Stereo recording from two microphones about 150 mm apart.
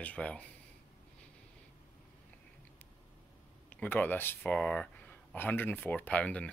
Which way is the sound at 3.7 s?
10° left (ahead or behind).